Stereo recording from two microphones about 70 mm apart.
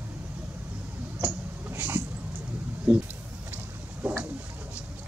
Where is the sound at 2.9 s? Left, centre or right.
Right.